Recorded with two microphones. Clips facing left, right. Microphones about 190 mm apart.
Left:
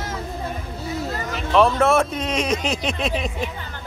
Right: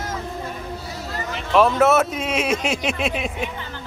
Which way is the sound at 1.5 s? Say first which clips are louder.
Right 1 dB; 5° right (ahead or behind).